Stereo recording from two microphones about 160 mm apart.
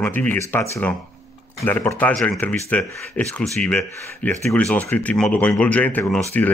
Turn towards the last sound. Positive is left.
turn(degrees=10)  # may be behind; listen again after turning